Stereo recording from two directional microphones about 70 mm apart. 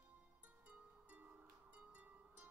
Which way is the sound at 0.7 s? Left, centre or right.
Right.